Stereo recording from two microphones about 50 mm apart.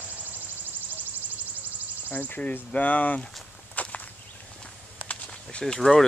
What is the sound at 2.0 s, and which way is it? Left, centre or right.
Cricket, left.